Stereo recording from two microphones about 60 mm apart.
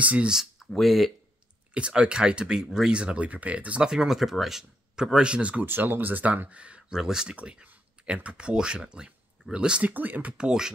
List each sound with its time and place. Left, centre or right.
0.0 s speech: right
0.3 s speech: centre
1.7 s speech: centre
3.9 s speech: centre
5.7 s speech: right
6.9 s speech: centre; by 10.3 s right
10.3 s speech: centre